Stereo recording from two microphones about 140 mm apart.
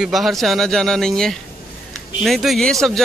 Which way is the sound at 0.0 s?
Centre (ahead or behind).